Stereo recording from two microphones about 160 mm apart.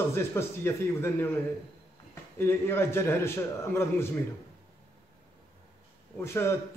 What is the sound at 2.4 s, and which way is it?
A man's voice, 15° left (ahead or behind).